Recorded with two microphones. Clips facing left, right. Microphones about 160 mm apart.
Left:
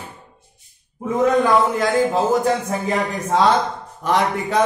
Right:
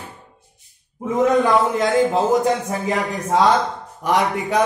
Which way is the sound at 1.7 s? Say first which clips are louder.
Right 1 dB; 20° right (ahead or behind).